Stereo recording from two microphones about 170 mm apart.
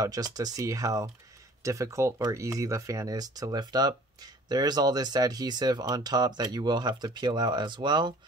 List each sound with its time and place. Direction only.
0.0 s speech: 20° right (ahead or behind)